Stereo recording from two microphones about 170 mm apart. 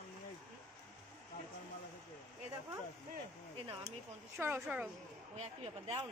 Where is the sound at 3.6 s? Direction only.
35° right (ahead or behind).